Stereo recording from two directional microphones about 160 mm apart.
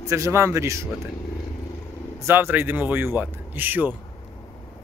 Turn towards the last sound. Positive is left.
turn(degrees=-10)  # may be behind; listen again after turning